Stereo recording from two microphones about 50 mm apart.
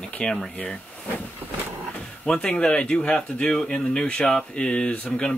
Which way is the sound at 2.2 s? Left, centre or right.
Centre.